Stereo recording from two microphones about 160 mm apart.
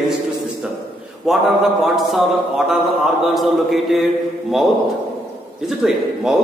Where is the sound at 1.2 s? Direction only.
Centre (ahead or behind).